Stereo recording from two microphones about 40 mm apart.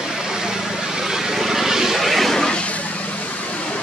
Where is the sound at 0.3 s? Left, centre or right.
Centre.